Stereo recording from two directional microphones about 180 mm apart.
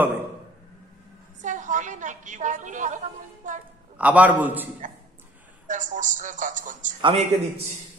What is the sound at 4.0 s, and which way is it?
Speech, 10° right (ahead or behind).